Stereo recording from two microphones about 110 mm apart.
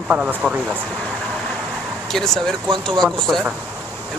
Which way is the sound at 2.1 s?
5° left (ahead or behind).